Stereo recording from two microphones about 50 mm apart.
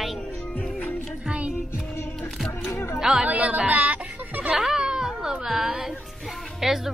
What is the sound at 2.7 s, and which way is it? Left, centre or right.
Speech, left.